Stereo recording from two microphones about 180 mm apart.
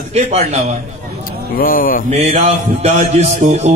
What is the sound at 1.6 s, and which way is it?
Speech, 50° left (ahead or behind).